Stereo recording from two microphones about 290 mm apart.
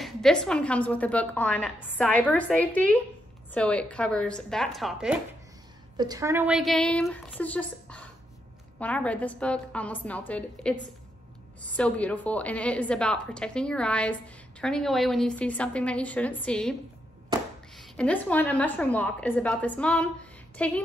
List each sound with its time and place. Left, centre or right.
0.0 s a woman's voice: centre
5.9 s a woman's voice: centre
17.7 s a woman's voice: centre